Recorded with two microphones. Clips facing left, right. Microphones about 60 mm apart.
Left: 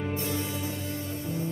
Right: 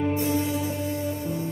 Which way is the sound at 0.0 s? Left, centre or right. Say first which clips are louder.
Right 7 dB; right.